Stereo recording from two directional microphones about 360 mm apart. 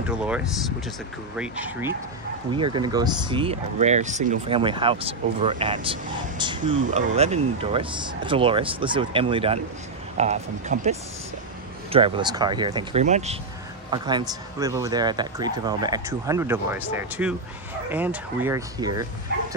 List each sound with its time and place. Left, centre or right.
0.2 s speech: centre
19.3 s bow-wow: right